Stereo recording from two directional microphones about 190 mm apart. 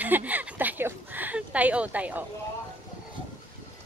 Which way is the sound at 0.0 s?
10° right (ahead or behind).